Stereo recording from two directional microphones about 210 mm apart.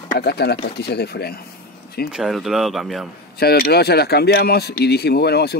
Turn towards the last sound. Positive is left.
turn(degrees=50)  # may be behind; listen again after turning